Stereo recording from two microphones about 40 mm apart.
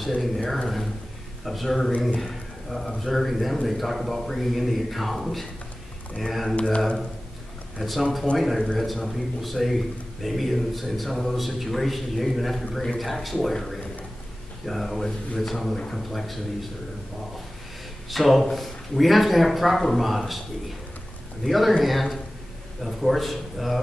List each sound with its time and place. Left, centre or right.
0.4 s speech: centre
1.4 s a man's voice: centre
6.5 s speech: left
7.8 s a man's voice: centre
18.1 s a man's voice: centre